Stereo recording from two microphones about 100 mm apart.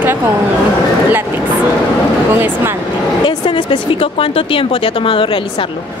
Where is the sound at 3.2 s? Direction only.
60° left (ahead or behind).